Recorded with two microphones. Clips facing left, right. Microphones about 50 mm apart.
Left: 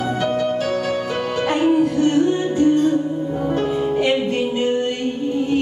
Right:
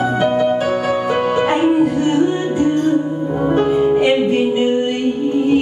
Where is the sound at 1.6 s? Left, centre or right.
Right.